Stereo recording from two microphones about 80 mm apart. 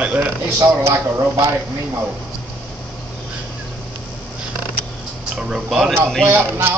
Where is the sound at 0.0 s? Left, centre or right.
Centre.